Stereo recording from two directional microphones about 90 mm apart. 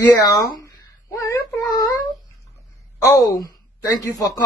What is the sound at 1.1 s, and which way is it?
Child singing, 35° left (ahead or behind).